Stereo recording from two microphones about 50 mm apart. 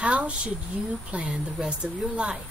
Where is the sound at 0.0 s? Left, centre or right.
Right.